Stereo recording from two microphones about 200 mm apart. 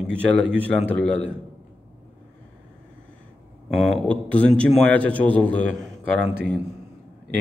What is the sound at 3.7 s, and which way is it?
A man's voice, centre (ahead or behind).